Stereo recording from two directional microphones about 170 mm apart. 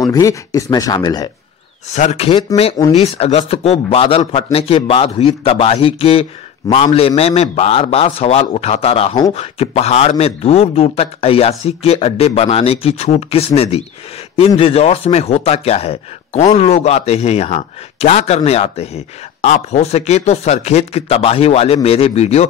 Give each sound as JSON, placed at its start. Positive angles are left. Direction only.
{"t": 0.0, "sound": "speech", "side_deg": 20}
{"t": 2.0, "sound": "a man's voice", "side_deg": 40}